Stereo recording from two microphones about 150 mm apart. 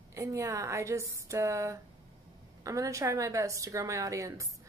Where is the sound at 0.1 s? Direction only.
20° right (ahead or behind).